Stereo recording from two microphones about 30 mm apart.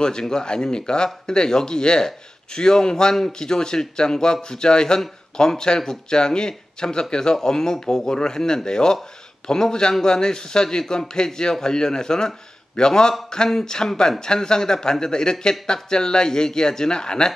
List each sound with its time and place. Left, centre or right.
0.0 s a man's voice: left